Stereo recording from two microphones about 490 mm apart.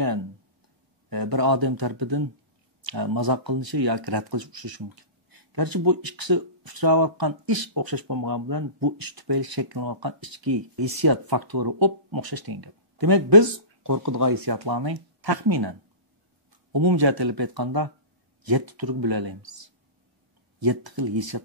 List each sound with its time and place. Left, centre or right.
1.1 s speech: right
16.7 s speech: right